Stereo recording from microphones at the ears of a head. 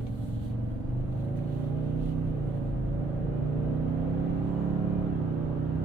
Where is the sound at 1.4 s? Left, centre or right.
Right.